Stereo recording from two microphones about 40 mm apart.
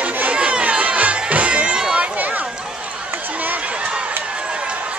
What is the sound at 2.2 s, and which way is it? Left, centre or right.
Run, right.